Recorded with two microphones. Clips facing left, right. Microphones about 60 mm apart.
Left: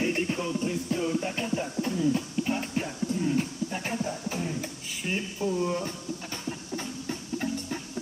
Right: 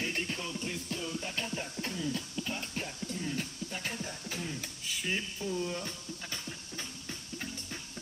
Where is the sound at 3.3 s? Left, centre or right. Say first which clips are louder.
Left 9 dB; left.